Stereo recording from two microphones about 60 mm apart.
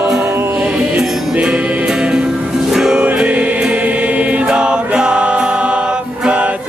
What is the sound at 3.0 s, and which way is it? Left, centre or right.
Choir, right.